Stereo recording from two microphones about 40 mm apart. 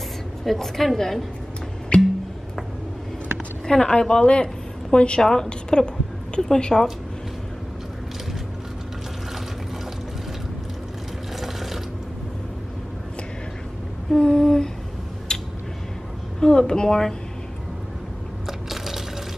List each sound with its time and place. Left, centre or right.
0.5 s a woman's voice: centre
1.9 s music: left
3.6 s a woman's voice: centre
5.2 s a woman's voice: centre
11.3 s mechanisms: centre
14.1 s humming: centre
15.3 s a sound: centre
18.7 s liquid: centre